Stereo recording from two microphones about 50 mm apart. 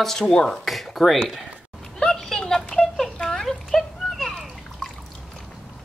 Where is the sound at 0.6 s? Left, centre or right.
Centre.